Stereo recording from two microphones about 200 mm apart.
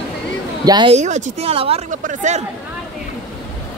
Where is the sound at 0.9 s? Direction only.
35° right (ahead or behind).